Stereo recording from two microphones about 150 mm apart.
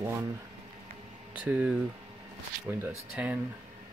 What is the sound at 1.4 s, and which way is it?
Speech, 10° right (ahead or behind).